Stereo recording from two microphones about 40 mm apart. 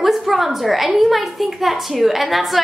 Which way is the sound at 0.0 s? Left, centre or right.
Centre.